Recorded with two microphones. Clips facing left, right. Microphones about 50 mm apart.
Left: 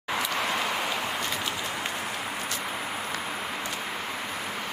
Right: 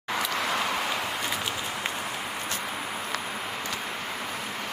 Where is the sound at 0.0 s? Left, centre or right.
Centre.